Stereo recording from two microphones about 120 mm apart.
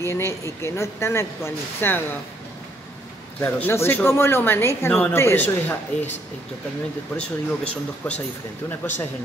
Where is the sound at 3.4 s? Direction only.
15° left (ahead or behind).